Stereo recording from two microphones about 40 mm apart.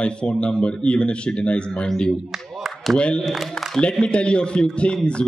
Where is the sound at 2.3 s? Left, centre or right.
Centre.